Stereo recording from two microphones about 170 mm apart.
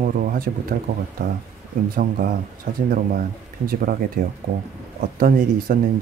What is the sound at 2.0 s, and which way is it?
Speech, 55° right (ahead or behind).